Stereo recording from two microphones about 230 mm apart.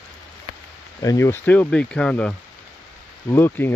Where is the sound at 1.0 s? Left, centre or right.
Centre.